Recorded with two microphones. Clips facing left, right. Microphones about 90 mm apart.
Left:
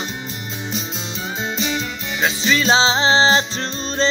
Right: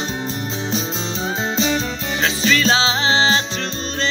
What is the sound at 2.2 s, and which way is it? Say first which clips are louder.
Music: even; 15° left (ahead or behind).